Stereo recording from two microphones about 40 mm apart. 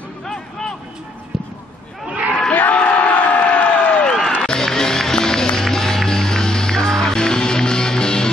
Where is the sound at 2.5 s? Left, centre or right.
Left.